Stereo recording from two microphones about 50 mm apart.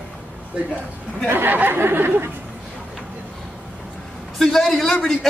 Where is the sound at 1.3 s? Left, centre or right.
Right.